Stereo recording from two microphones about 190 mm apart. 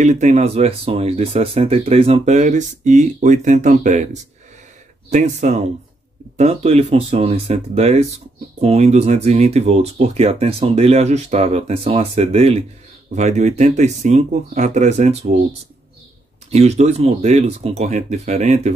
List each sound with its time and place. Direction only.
0.0 s speech: 40° right (ahead or behind)
16.4 s speech: 35° right (ahead or behind)